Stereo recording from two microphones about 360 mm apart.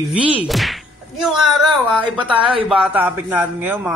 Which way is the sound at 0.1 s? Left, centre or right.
Centre.